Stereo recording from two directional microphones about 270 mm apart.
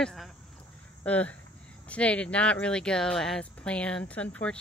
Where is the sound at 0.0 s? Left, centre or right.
Centre.